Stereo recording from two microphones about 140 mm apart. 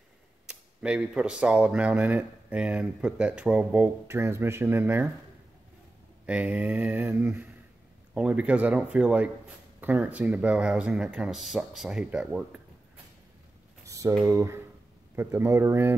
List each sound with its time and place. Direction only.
0.5 s speech: 5° right (ahead or behind)
6.2 s speech: 10° right (ahead or behind)
13.8 s typing: 25° right (ahead or behind)
14.1 s speech: 20° right (ahead or behind)